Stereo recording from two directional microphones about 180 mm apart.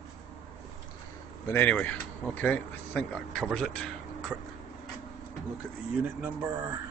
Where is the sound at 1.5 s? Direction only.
10° left (ahead or behind).